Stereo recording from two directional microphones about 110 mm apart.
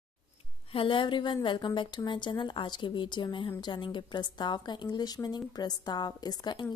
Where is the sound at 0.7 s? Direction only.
55° left (ahead or behind).